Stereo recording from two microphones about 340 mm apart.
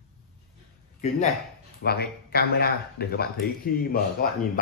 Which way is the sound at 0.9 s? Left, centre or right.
Centre.